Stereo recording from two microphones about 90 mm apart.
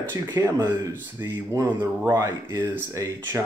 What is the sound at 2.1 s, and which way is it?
Speech, 45° right (ahead or behind).